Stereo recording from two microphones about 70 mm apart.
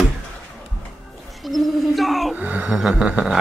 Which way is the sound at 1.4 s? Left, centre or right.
Centre.